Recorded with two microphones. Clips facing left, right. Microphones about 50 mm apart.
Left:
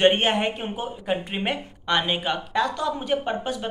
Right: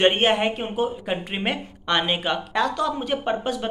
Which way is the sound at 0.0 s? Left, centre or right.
Right.